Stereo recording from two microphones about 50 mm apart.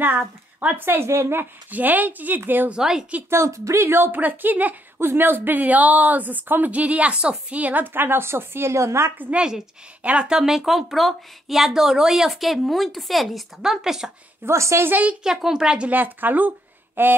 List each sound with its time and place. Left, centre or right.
0.6 s a woman's voice: right
1.4 s a woman's voice: right
2.7 s a woman's voice: centre
3.3 s speech: right
3.9 s a woman's voice: right
4.9 s a woman's voice: right
9.3 s a woman's voice: centre
13.6 s a woman's voice: centre
14.4 s speech: right
14.9 s a woman's voice: right
15.2 s a woman's voice: centre
15.9 s speech: right